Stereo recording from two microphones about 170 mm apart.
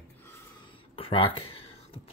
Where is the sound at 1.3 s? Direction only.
35° left (ahead or behind).